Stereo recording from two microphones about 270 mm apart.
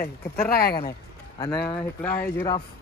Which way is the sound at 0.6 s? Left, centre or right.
Left.